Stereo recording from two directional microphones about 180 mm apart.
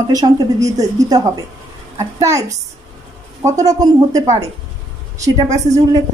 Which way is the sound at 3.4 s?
20° right (ahead or behind).